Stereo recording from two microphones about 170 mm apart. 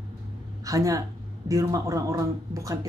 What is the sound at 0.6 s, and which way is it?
Speech, 20° right (ahead or behind).